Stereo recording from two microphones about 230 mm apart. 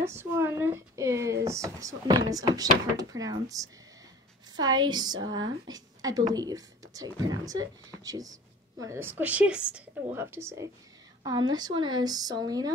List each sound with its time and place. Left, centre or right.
0.1 s speech: centre